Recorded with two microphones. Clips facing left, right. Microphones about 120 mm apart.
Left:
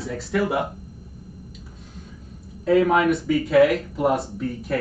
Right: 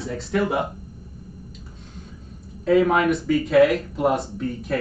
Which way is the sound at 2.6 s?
Centre (ahead or behind).